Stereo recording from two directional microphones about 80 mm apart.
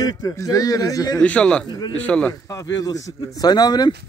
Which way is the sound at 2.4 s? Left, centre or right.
Left.